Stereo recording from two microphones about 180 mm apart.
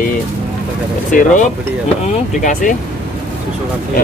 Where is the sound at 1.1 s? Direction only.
45° left (ahead or behind).